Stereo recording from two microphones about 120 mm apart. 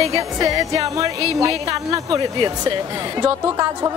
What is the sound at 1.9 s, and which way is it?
A woman's voice, 35° right (ahead or behind).